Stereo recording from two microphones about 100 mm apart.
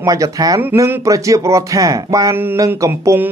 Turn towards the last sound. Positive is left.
turn(degrees=-25)  # may be behind; listen again after turning